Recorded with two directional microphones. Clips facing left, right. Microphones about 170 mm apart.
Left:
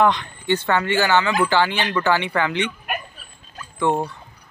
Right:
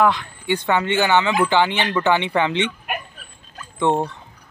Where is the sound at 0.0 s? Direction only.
5° right (ahead or behind); by 4.0 s 25° right (ahead or behind).